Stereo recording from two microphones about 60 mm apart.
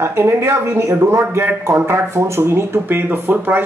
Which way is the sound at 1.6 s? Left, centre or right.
Right.